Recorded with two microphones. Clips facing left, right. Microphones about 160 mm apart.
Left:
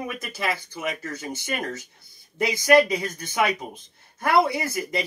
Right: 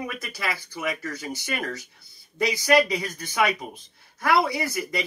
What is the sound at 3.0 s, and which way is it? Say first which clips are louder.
Speech: even; 25° left (ahead or behind).